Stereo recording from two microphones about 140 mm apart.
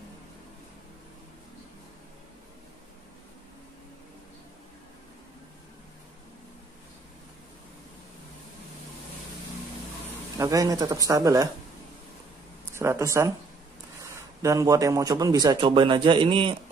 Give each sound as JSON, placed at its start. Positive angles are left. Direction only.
{"t": 10.3, "sound": "a man's voice", "side_deg": -25}
{"t": 12.7, "sound": "speech", "side_deg": -20}
{"t": 14.4, "sound": "a man's voice", "side_deg": -25}